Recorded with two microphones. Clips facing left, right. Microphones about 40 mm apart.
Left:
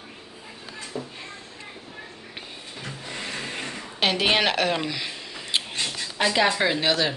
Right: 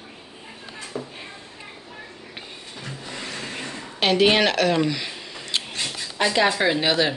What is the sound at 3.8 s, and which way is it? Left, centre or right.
Speech, centre.